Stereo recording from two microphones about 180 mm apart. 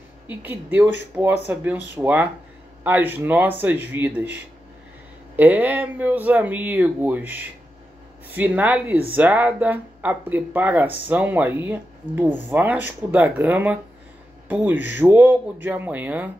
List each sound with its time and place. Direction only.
0.3 s speech: 10° right (ahead or behind)